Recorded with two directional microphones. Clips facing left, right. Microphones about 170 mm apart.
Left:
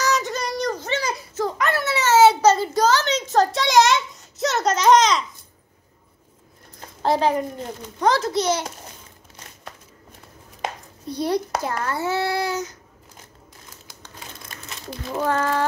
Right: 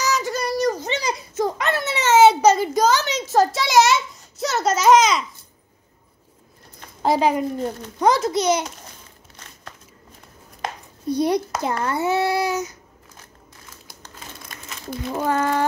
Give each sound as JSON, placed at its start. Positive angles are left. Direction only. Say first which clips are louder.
{"t": 0.0, "sound": "child singing", "louder": "even", "side_deg": 0}
{"t": 7.0, "sound": "a child's voice", "louder": "right 1 dB", "side_deg": -10}
{"t": 11.1, "sound": "a child's voice", "louder": "right 3 dB", "side_deg": -15}
{"t": 15.1, "sound": "a child's voice", "louder": "right 1 dB", "side_deg": -15}